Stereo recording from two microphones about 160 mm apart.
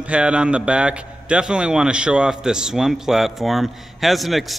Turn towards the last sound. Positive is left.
turn(degrees=0)  # may be behind; listen again after turning